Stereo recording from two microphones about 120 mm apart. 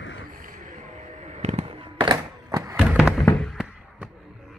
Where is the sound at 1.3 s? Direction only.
65° right (ahead or behind); by 2.1 s 45° right (ahead or behind).